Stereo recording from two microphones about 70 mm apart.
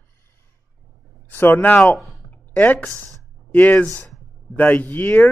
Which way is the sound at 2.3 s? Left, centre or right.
Left.